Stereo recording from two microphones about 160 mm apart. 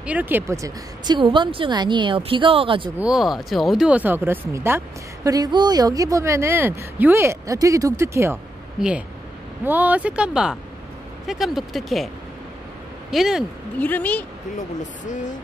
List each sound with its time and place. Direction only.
0.0 s speech: 10° right (ahead or behind); by 2.9 s 35° right (ahead or behind)
3.0 s speech: 5° right (ahead or behind)
8.7 s speech: 5° right (ahead or behind)
13.1 s speech: 5° right (ahead or behind)
13.7 s a woman's voice: 10° left (ahead or behind)
14.8 s speech: 50° left (ahead or behind)